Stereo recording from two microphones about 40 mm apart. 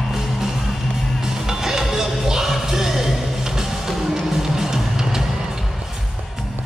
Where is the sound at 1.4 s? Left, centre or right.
Centre.